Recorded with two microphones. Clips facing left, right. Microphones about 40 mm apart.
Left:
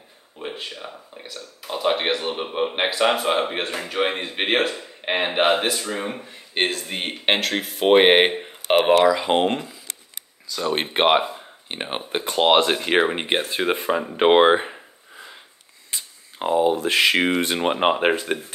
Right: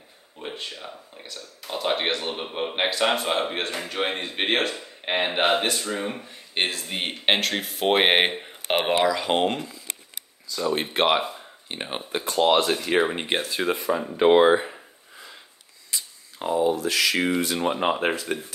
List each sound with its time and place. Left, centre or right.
0.4 s speech: centre
9.2 s speech: centre
10.5 s speech: left
10.9 s speech: left
12.1 s speech: left
13.1 s speech: left
13.7 s speech: left
14.7 s gasp: centre
15.9 s speech: left